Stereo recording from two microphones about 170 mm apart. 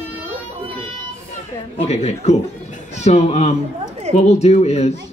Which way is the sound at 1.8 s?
40° left (ahead or behind).